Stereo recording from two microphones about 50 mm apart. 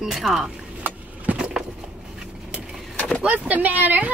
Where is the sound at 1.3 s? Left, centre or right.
Right.